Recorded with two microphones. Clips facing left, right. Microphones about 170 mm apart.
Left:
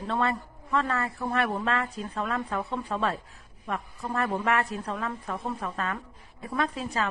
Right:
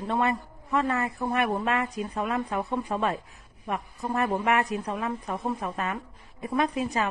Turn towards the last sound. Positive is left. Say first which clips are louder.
# right 3 dB
turn(degrees=-15)  # may be behind; listen again after turning